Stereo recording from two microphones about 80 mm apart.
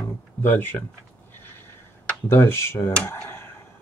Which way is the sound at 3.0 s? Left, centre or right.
Left.